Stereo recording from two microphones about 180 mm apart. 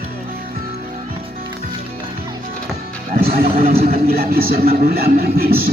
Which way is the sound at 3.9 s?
55° right (ahead or behind).